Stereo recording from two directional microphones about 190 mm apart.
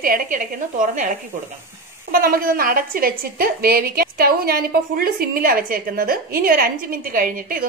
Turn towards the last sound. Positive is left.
turn(degrees=-45)  # may be behind; listen again after turning